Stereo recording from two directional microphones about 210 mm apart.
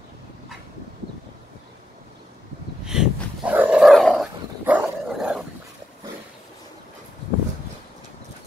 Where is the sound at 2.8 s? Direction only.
5° right (ahead or behind).